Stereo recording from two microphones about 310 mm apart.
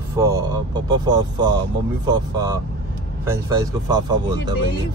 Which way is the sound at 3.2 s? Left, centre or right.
Centre.